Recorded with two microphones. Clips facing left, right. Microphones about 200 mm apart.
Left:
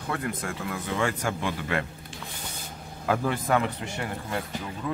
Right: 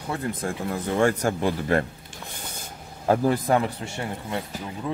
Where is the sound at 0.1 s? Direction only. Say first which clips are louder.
Right 3 dB; 30° right (ahead or behind).